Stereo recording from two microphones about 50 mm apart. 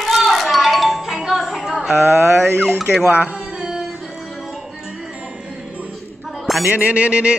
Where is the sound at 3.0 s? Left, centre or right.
Right.